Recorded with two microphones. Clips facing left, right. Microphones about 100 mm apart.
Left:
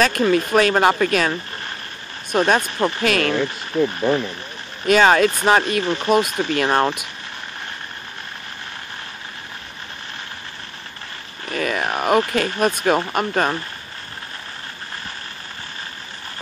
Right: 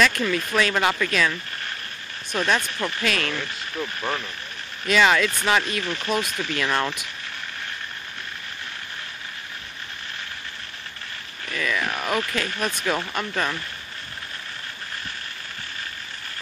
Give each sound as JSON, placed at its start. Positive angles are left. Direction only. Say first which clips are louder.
{"t": 0.0, "sound": "speech", "louder": "left 5 dB", "side_deg": 45}
{"t": 3.1, "sound": "speech", "louder": "left 6 dB", "side_deg": 50}
{"t": 4.8, "sound": "speech", "louder": "left 5 dB", "side_deg": 45}
{"t": 11.4, "sound": "a sound", "louder": "left 4 dB", "side_deg": 45}
{"t": 12.2, "sound": "speech", "louder": "left 8 dB", "side_deg": 40}